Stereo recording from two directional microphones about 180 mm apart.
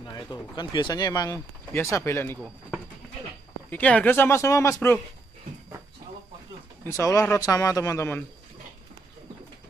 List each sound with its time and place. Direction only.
0.0 s speech: 20° left (ahead or behind)
3.7 s speech: 10° left (ahead or behind)
6.9 s speech: 20° left (ahead or behind)